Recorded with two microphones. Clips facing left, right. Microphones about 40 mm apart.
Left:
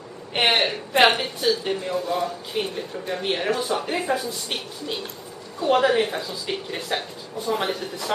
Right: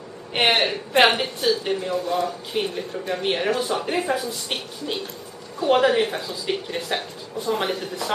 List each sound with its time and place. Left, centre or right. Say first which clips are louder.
0.3 s a woman's voice: right 1 dB; centre
5.6 s a woman's voice: right 1 dB; centre